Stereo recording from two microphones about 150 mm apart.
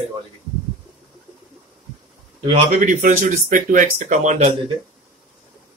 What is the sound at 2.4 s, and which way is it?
Speech, 35° right (ahead or behind).